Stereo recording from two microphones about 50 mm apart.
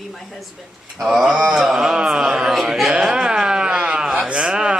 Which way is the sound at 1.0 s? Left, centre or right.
Centre.